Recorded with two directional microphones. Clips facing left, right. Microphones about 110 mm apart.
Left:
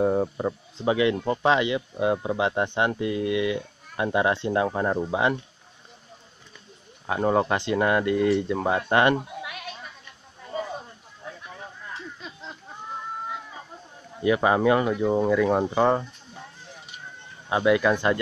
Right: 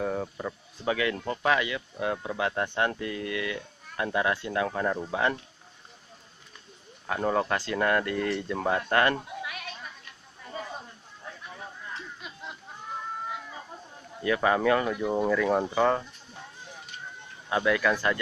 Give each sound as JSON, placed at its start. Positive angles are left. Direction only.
{"t": 0.0, "sound": "speech", "side_deg": 25}
{"t": 5.0, "sound": "speech", "side_deg": 15}
{"t": 7.1, "sound": "speech", "side_deg": 15}
{"t": 14.2, "sound": "speech", "side_deg": 20}
{"t": 17.5, "sound": "speech", "side_deg": 20}